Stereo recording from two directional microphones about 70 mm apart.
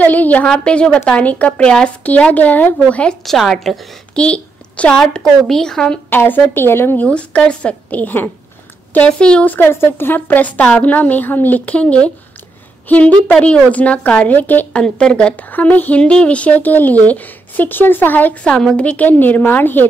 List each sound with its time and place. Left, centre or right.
0.0 s a woman's voice: left
0.5 s a woman's voice: centre
3.3 s a woman's voice: centre
4.2 s a sound: centre
5.0 s a woman's voice: centre
6.0 s a woman's voice: left
7.0 s a woman's voice: centre
9.5 s a woman's voice: left
14.8 s a woman's voice: centre
15.5 s a woman's voice: left
18.5 s a woman's voice: centre
19.0 s a woman's voice: left